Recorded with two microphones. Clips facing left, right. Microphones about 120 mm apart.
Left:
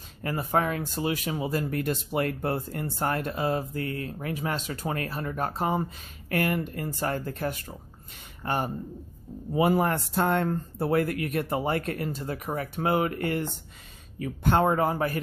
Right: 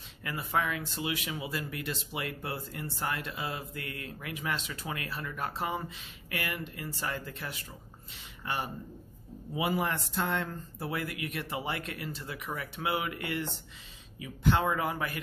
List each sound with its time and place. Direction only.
0.2 s speech: 40° left (ahead or behind)